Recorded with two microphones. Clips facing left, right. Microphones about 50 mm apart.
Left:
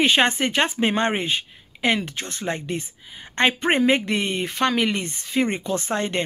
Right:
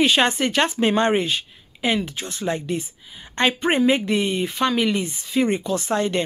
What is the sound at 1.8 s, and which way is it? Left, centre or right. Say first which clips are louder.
Speech: even; left.